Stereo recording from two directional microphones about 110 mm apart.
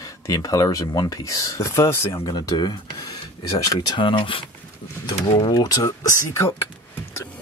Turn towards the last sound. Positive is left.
turn(degrees=30)  # may be behind; listen again after turning